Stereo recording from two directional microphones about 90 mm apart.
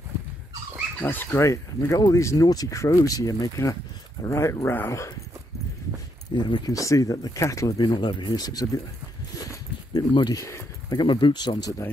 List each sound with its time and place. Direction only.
1.0 s speech: 20° left (ahead or behind)
1.3 s speech: 35° left (ahead or behind)
6.3 s speech: 55° left (ahead or behind)
6.7 s speech: 40° left (ahead or behind)
7.9 s speech: 65° left (ahead or behind); by 8.8 s 45° left (ahead or behind)
9.9 s speech: 50° left (ahead or behind)